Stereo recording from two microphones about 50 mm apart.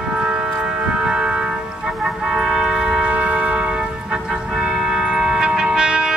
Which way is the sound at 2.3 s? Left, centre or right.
Centre.